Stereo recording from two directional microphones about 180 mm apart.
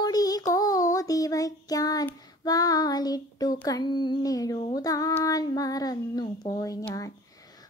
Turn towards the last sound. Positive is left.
turn(degrees=20)  # may be behind; listen again after turning